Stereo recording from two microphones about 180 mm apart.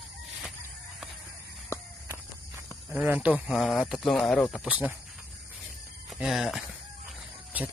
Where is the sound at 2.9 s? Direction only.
10° right (ahead or behind).